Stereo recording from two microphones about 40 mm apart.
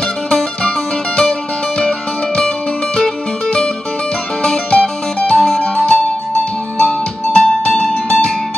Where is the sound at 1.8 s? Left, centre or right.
Left.